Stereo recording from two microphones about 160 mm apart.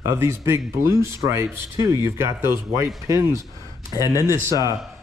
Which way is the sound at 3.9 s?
20° left (ahead or behind).